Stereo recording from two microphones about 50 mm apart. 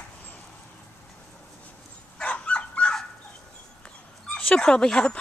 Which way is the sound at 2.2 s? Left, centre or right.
Left.